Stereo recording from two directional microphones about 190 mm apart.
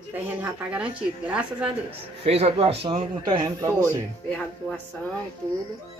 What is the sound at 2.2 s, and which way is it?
A man's voice, 30° right (ahead or behind).